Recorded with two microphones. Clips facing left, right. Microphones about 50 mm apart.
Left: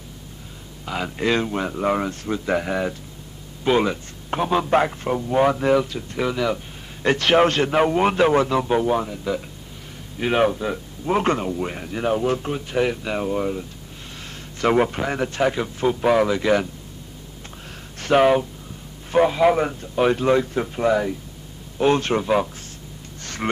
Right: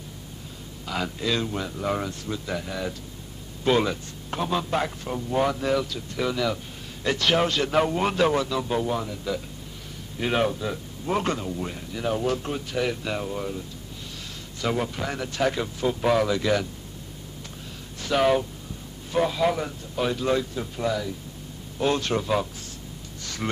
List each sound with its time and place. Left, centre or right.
0.8 s a man's voice: left
1.1 s a man's voice: left
3.6 s a man's voice: centre
7.0 s a man's voice: left
11.7 s a man's voice: left
12.1 s a man's voice: left
12.6 s a man's voice: left
14.2 s a sound: left
15.0 s a man's voice: left
15.4 s a man's voice: centre
18.1 s a man's voice: left
23.2 s gasp: left